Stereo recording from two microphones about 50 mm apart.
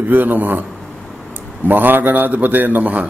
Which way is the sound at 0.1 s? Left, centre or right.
Right.